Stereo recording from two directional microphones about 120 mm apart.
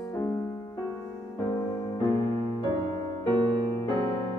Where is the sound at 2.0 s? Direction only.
25° left (ahead or behind).